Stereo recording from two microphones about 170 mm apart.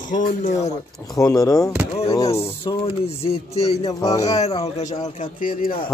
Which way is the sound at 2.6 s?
35° left (ahead or behind).